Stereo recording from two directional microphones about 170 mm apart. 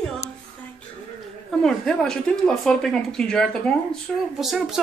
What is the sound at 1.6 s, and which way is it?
Speech, 5° left (ahead or behind).